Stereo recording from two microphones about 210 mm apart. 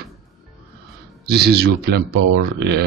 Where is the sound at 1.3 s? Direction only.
50° right (ahead or behind).